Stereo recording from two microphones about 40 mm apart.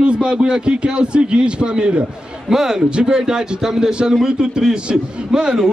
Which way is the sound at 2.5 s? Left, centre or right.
Centre.